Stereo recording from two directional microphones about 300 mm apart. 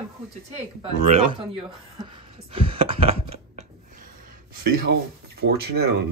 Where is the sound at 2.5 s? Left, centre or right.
Centre.